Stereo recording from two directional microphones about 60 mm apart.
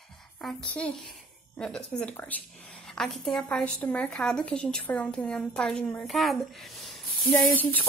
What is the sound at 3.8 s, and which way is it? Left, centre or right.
Speech, left.